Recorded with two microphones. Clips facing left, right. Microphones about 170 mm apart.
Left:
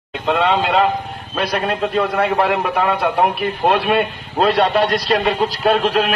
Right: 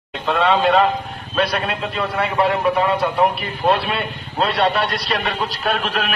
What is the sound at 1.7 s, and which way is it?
A man's voice, 50° left (ahead or behind).